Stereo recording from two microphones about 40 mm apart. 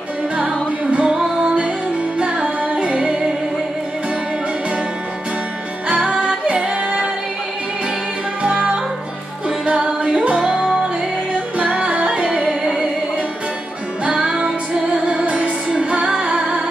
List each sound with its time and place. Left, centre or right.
0.8 s music: right
2.6 s music: right
6.2 s music: right
8.4 s music: right
11.5 s music: right
14.0 s music: right